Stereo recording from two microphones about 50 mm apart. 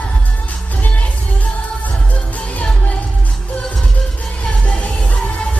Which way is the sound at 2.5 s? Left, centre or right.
Left.